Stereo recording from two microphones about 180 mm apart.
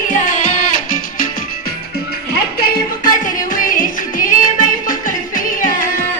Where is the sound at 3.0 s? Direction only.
50° left (ahead or behind).